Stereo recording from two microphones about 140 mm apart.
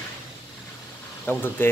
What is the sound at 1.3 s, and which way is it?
Speech, 15° left (ahead or behind).